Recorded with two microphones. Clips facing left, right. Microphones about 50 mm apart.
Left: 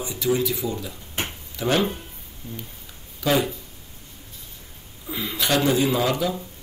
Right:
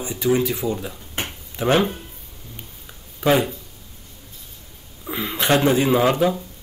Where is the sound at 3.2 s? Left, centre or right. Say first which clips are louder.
Right 4 dB; right.